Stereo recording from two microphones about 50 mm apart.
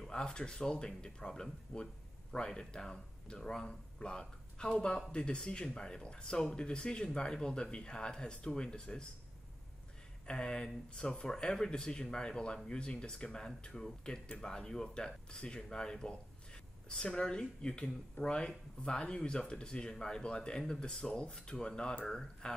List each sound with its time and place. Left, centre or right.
0.1 s speech: centre
10.2 s speech: centre